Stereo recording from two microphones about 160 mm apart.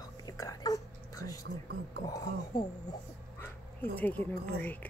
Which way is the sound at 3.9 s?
10° left (ahead or behind).